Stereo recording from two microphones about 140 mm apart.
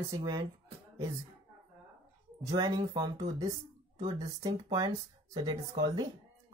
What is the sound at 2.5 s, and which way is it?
Speech, 30° right (ahead or behind).